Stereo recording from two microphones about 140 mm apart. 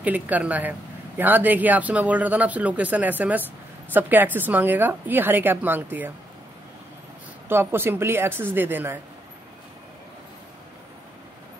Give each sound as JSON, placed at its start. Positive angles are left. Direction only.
{"t": 0.0, "sound": "speech", "side_deg": -10}
{"t": 7.4, "sound": "speech", "side_deg": -15}